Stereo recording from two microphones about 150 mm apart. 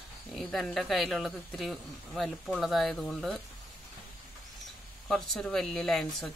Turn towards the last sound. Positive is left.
turn(degrees=0)  # may be behind; listen again after turning